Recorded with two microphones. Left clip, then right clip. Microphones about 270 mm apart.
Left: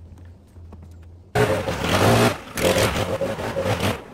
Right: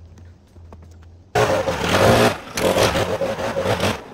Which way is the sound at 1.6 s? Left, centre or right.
Right.